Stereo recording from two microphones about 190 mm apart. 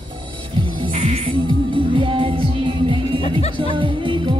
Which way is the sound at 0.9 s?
35° right (ahead or behind).